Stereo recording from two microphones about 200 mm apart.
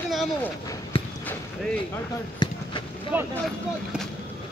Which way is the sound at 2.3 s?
20° left (ahead or behind).